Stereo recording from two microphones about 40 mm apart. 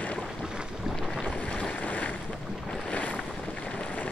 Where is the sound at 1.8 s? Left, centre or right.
Left.